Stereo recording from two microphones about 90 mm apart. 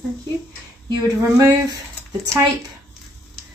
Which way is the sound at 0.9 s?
40° right (ahead or behind).